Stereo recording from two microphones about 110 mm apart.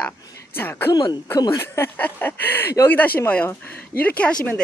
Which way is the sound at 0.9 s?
40° left (ahead or behind).